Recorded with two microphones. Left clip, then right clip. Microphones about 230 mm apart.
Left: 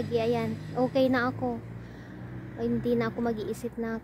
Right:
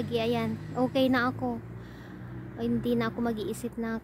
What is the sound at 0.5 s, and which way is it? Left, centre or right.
Speech, left.